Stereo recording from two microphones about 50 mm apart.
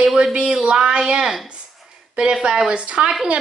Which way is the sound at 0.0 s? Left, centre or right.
Centre.